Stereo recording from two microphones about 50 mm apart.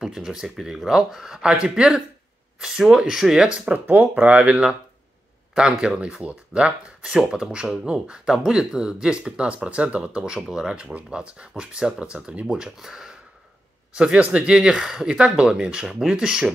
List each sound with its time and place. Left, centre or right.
0.0 s speech: centre
3.7 s speech: right
5.5 s speech: centre
6.2 s speech: right
7.0 s speech: centre
12.4 s speech: centre
14.2 s speech: right